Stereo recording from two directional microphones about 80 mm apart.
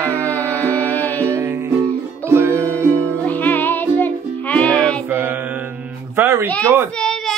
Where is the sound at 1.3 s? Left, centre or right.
Right.